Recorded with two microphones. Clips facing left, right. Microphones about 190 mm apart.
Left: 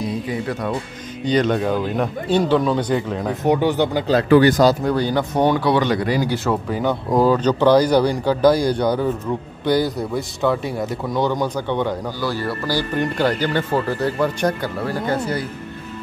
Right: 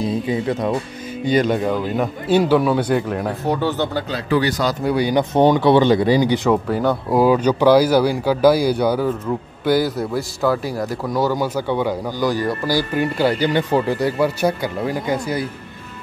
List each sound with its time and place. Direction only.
0.0 s speech: 25° right (ahead or behind)
1.2 s a man's voice: 10° right (ahead or behind)
3.4 s speech: 15° left (ahead or behind)
4.2 s speech: 55° left (ahead or behind)
4.8 s a man's voice: 10° right (ahead or behind); by 6.2 s 25° right (ahead or behind)
6.3 s a man's voice: 15° right (ahead or behind)